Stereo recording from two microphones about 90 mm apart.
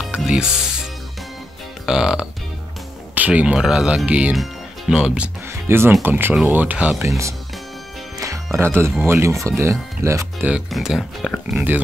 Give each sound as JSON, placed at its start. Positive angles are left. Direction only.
{"t": 0.1, "sound": "music", "side_deg": -10}
{"t": 1.9, "sound": "speech", "side_deg": -10}
{"t": 4.3, "sound": "speech", "side_deg": -5}
{"t": 5.5, "sound": "speech", "side_deg": -25}
{"t": 7.1, "sound": "speech", "side_deg": -35}
{"t": 8.2, "sound": "music", "side_deg": -35}
{"t": 9.0, "sound": "speech", "side_deg": -30}
{"t": 10.7, "sound": "speech", "side_deg": -5}
{"t": 11.5, "sound": "speech", "side_deg": -20}